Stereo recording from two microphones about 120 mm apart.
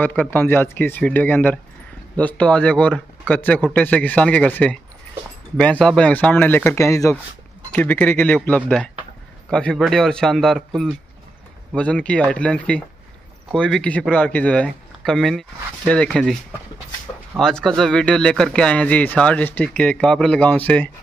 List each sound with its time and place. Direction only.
0.0 s speech: 15° left (ahead or behind)
7.7 s speech: 15° left (ahead or behind)
17.4 s speech: 5° left (ahead or behind)